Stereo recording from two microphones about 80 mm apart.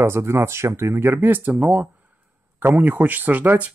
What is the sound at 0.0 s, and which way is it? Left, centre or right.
Speech, right.